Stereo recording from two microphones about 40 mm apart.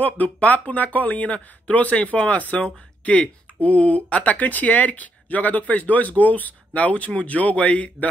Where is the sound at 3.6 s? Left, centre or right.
Left.